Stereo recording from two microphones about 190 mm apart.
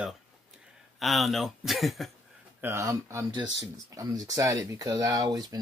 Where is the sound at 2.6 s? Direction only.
15° right (ahead or behind).